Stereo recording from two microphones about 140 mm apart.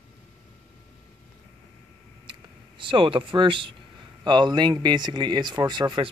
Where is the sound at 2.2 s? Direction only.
35° right (ahead or behind).